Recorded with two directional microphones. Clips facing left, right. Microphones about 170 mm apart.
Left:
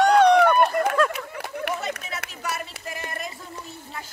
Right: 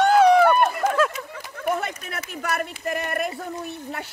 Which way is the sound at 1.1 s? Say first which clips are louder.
Left 3 dB; 60° left (ahead or behind).